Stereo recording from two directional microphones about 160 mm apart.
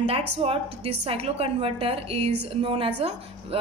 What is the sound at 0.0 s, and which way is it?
A woman's voice, 35° right (ahead or behind).